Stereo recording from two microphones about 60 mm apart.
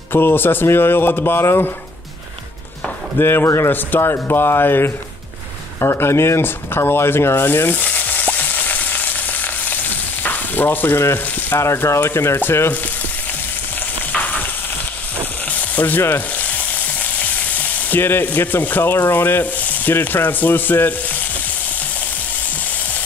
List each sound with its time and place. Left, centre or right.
0.1 s speech: left
3.2 s a man's voice: left
3.7 s speech: left
5.8 s rub: left
10.2 s speech: left
14.1 s frying: left
15.7 s sizzle: left
16.4 s frying: left